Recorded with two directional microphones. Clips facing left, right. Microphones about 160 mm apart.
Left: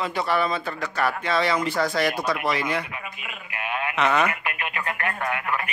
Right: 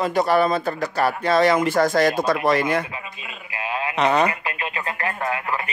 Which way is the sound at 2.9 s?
25° right (ahead or behind).